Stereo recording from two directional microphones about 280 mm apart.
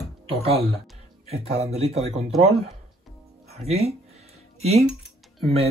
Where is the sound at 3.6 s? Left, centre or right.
Right.